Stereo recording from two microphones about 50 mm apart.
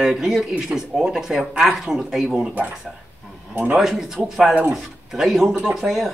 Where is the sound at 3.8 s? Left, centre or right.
Centre.